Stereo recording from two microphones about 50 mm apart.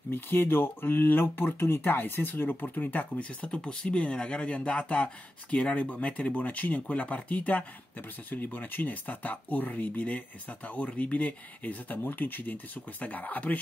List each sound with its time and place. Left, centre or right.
0.1 s speech: left